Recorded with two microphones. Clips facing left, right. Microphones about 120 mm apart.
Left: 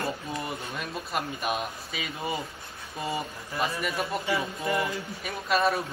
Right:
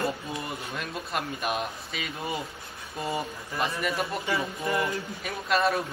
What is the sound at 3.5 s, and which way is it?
Speech, centre (ahead or behind).